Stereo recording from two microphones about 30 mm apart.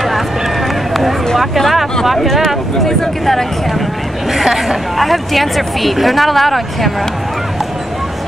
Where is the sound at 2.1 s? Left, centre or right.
Centre.